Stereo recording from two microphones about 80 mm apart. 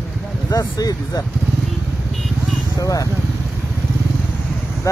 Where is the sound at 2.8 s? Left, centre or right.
Left.